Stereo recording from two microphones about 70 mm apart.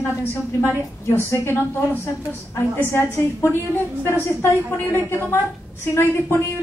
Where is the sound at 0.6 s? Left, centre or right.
Left.